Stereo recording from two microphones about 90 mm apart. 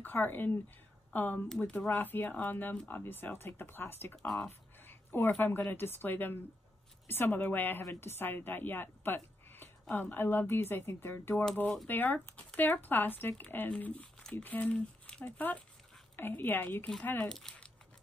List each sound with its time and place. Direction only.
0.0 s a woman's voice: 20° left (ahead or behind)
4.5 s a sound: 25° left (ahead or behind)
5.4 s speech: 25° left (ahead or behind)
11.6 s speech: 5° left (ahead or behind)
11.9 s speech: 20° left (ahead or behind)
17.3 s speech: 5° left (ahead or behind)